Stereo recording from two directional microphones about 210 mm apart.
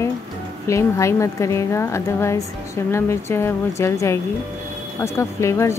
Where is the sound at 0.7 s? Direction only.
15° left (ahead or behind).